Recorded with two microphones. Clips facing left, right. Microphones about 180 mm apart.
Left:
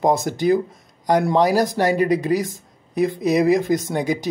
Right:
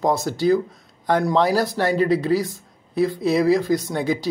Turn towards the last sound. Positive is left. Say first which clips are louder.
# left 1 dB
turn(degrees=15)  # may be behind; listen again after turning